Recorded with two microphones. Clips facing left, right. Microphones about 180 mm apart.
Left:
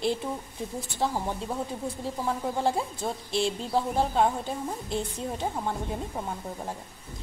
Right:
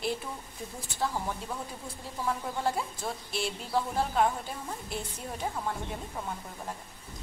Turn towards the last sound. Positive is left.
turn(degrees=25)  # may be behind; listen again after turning